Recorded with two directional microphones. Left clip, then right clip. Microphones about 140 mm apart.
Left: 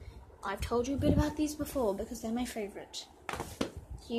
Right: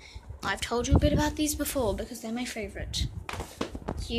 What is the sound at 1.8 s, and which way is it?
Speech, 15° left (ahead or behind).